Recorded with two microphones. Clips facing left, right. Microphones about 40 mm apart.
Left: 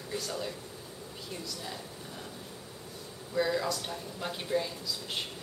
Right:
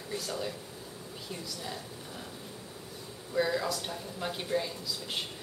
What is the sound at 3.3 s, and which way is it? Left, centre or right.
Speech, centre.